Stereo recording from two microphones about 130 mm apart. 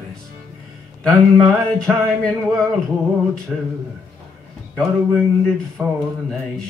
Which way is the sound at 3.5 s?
15° right (ahead or behind).